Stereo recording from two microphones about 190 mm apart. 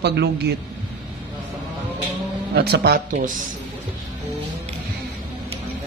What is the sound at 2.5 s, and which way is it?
Speech, 55° right (ahead or behind).